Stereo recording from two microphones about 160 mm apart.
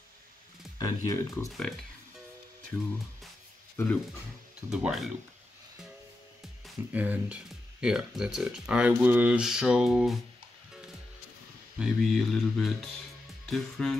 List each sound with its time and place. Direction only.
0.7 s speech: 20° left (ahead or behind)
1.5 s music: centre (ahead or behind)
3.7 s speech: 10° left (ahead or behind)
4.6 s speech: 5° right (ahead or behind)
6.6 s speech: 10° right (ahead or behind)
11.8 s speech: centre (ahead or behind)